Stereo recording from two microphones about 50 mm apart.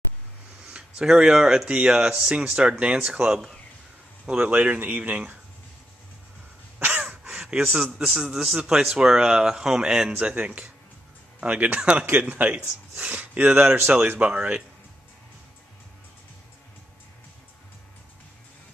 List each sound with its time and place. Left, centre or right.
0.7 s speech: centre
4.4 s a man's voice: right
6.8 s crow: right
7.4 s a man's voice: centre
10.2 s a man's voice: right